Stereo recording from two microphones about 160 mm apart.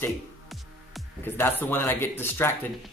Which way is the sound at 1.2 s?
15° left (ahead or behind).